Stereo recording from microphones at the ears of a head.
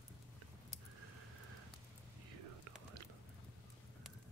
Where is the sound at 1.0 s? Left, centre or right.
Right.